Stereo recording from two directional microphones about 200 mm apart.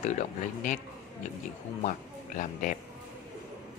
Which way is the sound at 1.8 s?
40° left (ahead or behind).